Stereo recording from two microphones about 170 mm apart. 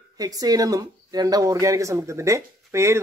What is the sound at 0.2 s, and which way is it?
A woman's voice, 20° right (ahead or behind).